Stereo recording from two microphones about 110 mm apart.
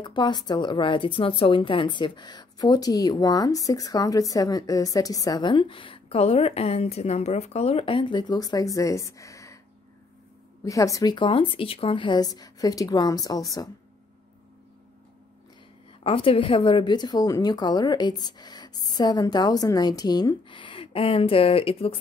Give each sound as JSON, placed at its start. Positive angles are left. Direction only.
{"t": 0.0, "sound": "speech", "side_deg": 45}
{"t": 10.6, "sound": "speech", "side_deg": 30}
{"t": 16.0, "sound": "speech", "side_deg": 55}